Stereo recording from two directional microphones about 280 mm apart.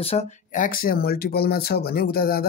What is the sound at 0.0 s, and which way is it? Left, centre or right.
Speech, left.